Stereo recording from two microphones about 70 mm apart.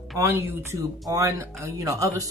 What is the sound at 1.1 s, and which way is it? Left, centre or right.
A woman's voice, right.